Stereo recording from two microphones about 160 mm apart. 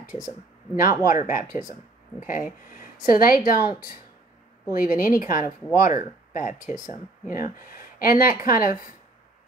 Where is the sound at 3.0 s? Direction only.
65° left (ahead or behind).